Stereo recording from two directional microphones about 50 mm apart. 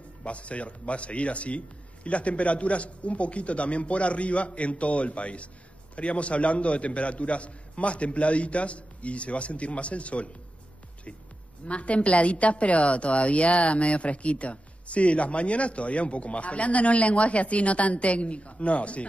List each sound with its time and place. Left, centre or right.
0.2 s a woman's voice: left
11.6 s a woman's voice: left